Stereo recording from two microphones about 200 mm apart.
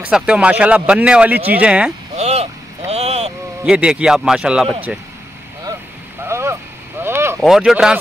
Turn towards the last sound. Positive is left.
turn(degrees=-5)  # may be behind; listen again after turning